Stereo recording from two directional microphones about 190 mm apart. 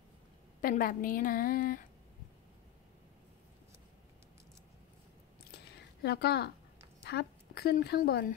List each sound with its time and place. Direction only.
0.6 s a woman's voice: 50° left (ahead or behind)
6.0 s a woman's voice: 60° left (ahead or behind)